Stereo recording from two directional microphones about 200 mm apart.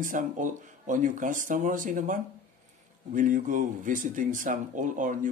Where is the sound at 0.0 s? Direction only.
40° right (ahead or behind).